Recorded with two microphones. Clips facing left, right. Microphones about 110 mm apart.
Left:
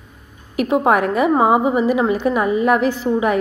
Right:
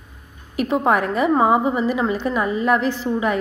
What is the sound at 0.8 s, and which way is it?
Speech, 50° left (ahead or behind).